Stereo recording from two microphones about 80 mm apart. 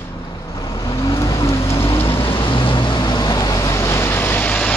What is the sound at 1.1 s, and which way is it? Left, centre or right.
Vehicle, left.